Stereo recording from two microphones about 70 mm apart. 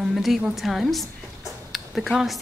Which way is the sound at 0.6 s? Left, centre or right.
Centre.